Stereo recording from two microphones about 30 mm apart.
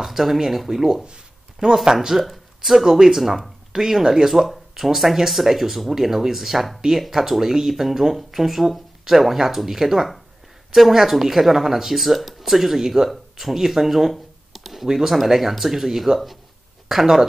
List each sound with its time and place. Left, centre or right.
0.0 s speech: centre
3.7 s speech: centre
4.5 s speech: centre